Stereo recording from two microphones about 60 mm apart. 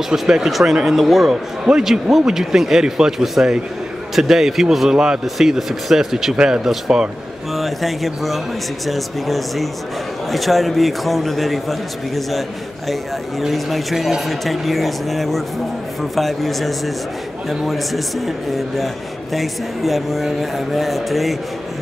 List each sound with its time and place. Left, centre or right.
0.1 s speech: centre